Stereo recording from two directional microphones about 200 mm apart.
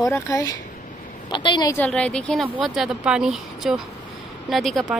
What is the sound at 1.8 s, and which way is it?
Speech, 5° left (ahead or behind).